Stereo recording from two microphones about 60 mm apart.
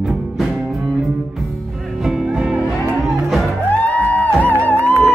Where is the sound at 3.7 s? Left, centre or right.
Left.